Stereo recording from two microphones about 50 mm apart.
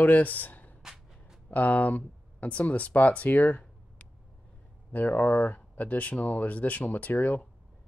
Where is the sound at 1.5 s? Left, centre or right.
Left.